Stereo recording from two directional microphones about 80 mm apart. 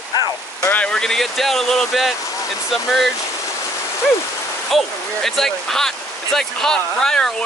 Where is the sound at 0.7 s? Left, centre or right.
Centre.